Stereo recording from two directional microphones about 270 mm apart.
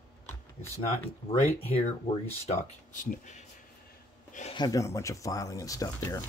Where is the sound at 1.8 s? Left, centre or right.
Left.